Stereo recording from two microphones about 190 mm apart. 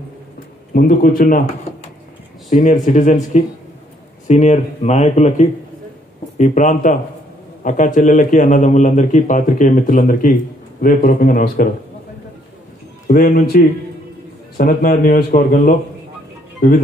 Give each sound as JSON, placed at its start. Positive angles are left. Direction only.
{"t": 0.7, "sound": "speech", "side_deg": 50}
{"t": 2.5, "sound": "a man's voice", "side_deg": 40}
{"t": 13.0, "sound": "speech", "side_deg": 50}